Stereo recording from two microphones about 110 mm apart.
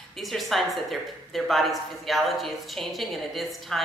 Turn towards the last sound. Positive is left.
turn(degrees=0)  # may be behind; listen again after turning